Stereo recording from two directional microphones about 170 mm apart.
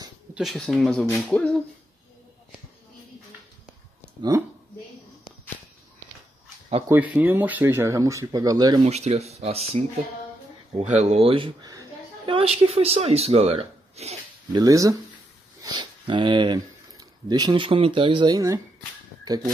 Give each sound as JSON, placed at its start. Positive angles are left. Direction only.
{"t": 0.3, "sound": "speech", "side_deg": 0}
{"t": 6.9, "sound": "speech", "side_deg": -10}
{"t": 8.8, "sound": "speech", "side_deg": -40}
{"t": 14.5, "sound": "speech", "side_deg": -20}